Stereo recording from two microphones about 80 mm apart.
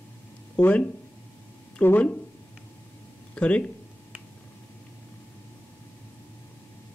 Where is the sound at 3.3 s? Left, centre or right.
Centre.